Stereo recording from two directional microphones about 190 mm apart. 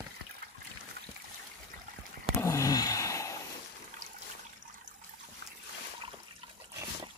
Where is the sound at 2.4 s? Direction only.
15° left (ahead or behind).